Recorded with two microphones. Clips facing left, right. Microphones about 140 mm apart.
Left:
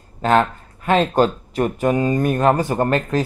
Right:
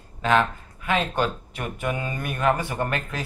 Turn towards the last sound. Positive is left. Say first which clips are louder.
# left 9 dB
turn(degrees=40)  # may be behind; listen again after turning